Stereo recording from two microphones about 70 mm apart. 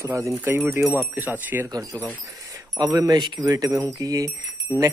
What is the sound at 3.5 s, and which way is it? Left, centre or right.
Speech, right.